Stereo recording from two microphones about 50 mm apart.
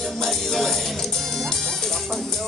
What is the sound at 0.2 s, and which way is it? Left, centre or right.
Music, centre.